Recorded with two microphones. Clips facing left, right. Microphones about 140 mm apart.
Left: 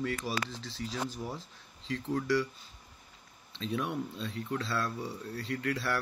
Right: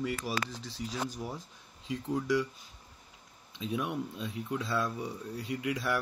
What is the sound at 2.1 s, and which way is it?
Speech, 15° right (ahead or behind).